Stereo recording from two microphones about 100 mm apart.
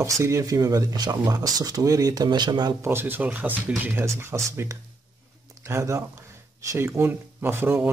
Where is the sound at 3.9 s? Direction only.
25° right (ahead or behind).